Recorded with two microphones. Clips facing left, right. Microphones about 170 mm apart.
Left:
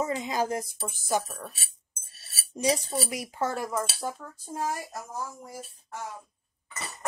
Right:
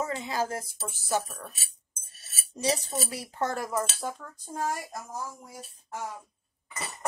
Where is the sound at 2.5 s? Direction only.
15° left (ahead or behind).